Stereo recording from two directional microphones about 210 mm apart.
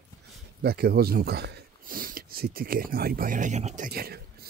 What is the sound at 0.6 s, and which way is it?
Speech, 45° right (ahead or behind).